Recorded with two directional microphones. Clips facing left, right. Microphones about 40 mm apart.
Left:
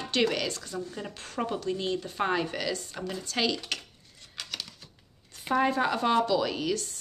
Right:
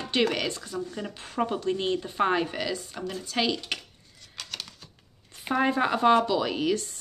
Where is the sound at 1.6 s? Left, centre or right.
Right.